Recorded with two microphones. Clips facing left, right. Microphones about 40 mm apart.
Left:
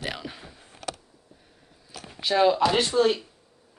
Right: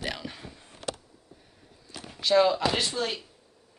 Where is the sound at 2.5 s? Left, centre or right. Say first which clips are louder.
Left 5 dB; left.